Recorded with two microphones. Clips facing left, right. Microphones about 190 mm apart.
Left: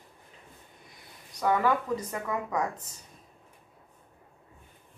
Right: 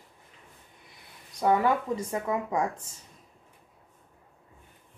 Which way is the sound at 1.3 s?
30° right (ahead or behind).